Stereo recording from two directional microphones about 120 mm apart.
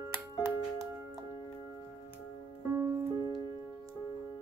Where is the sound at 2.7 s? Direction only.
25° right (ahead or behind).